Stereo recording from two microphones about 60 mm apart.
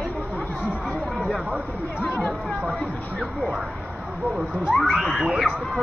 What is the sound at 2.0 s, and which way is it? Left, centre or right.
Speech, left.